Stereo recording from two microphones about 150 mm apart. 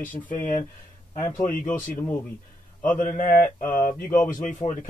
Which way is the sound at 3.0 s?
65° left (ahead or behind).